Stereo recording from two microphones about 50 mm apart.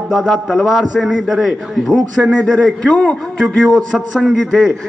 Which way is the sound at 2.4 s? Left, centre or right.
Centre.